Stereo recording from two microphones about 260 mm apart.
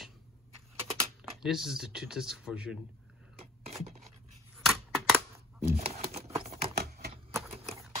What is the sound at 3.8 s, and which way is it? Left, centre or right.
Scratch, right.